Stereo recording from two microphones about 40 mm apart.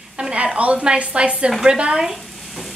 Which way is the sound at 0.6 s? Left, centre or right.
Right.